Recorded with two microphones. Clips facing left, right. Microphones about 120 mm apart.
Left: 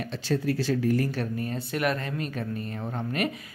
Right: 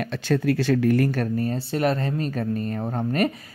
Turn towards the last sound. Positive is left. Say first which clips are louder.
# right 6 dB
turn(degrees=-40)  # may be behind; listen again after turning